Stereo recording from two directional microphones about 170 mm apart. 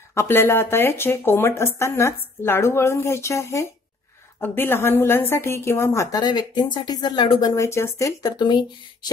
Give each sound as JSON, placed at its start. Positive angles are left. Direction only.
{"t": 0.1, "sound": "a woman's voice", "side_deg": 15}